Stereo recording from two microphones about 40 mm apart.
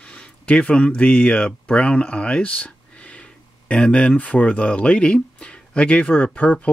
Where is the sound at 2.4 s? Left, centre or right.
Left.